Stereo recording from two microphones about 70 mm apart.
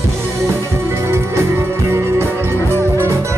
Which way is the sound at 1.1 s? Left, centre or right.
Right.